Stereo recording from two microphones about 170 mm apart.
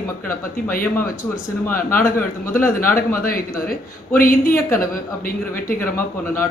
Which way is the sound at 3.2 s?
60° left (ahead or behind).